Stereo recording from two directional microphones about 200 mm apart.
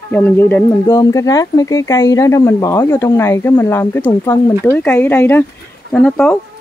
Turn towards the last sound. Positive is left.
turn(degrees=5)  # may be behind; listen again after turning